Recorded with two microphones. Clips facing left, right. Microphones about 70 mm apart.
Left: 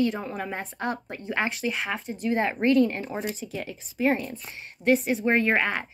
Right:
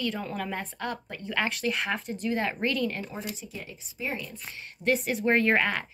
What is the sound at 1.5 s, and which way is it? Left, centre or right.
Speech, centre.